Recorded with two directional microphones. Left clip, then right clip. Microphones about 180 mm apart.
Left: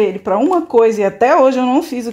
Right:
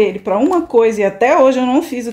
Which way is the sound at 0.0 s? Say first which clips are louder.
Even; 30° left (ahead or behind).